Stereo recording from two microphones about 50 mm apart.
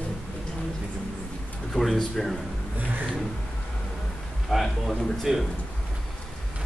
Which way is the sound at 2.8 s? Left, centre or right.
Right.